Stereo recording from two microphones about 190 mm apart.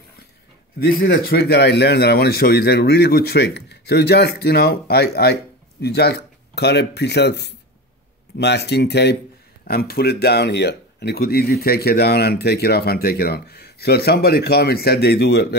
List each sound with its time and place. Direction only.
0.7 s speech: 55° left (ahead or behind)